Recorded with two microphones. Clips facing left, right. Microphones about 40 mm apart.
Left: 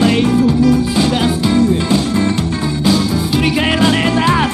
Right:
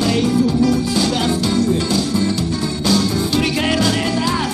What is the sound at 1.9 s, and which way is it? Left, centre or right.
Music, left.